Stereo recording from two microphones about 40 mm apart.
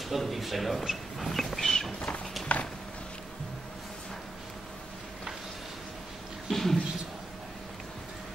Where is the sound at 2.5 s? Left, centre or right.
Left.